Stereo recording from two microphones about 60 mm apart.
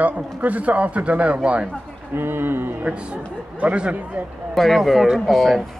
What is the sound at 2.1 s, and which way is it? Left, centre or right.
Speech, right.